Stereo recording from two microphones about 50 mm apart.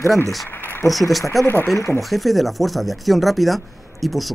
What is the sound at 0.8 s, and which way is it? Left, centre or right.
Speech, left.